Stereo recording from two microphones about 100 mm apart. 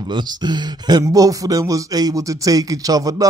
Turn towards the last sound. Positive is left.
turn(degrees=-35)  # may be behind; listen again after turning